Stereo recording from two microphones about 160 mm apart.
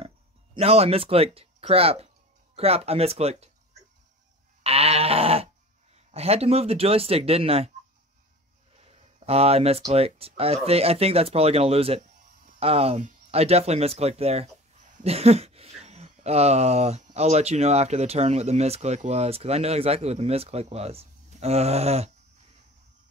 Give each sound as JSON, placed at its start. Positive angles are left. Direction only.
{"t": 0.6, "sound": "speech", "side_deg": -40}
{"t": 4.6, "sound": "goat", "side_deg": -40}
{"t": 6.1, "sound": "speech", "side_deg": -40}
{"t": 8.7, "sound": "speech", "side_deg": -40}